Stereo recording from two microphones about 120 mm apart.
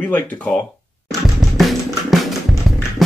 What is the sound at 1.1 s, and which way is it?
Music, centre (ahead or behind).